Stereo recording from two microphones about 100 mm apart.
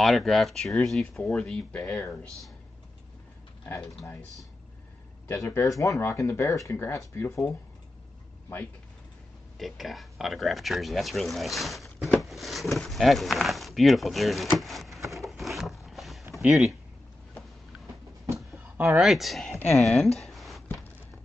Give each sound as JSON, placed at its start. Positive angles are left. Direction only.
{"t": 0.0, "sound": "speech", "side_deg": 0}
{"t": 5.3, "sound": "speech", "side_deg": 30}
{"t": 9.6, "sound": "speech", "side_deg": 0}
{"t": 14.6, "sound": "a sound", "side_deg": 0}
{"t": 16.3, "sound": "speech", "side_deg": 0}
{"t": 18.9, "sound": "speech", "side_deg": 0}
{"t": 20.2, "sound": "a sound", "side_deg": 0}